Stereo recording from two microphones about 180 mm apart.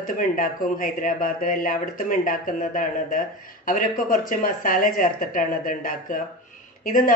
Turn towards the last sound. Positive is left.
turn(degrees=50)  # may be behind; listen again after turning